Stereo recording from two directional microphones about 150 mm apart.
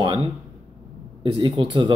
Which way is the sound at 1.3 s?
35° right (ahead or behind).